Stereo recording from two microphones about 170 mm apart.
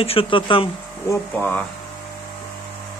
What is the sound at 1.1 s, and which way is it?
Speech, 10° left (ahead or behind).